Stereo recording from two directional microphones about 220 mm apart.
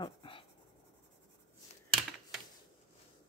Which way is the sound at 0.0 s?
25° left (ahead or behind).